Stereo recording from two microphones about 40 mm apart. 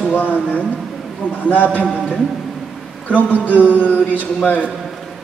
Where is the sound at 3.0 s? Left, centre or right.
Left.